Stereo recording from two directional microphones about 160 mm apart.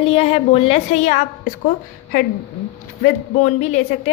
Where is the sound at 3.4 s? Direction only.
45° left (ahead or behind).